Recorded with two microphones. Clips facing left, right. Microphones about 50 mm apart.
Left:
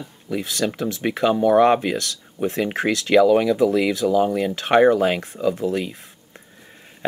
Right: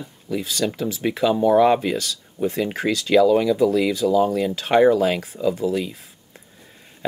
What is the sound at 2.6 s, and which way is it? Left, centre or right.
Speech, centre.